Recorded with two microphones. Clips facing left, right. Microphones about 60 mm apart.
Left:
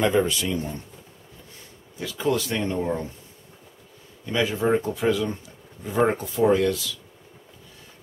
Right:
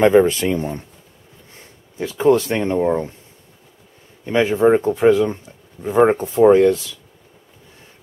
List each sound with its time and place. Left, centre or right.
0.0 s speech: right
2.0 s speech: right
4.3 s speech: right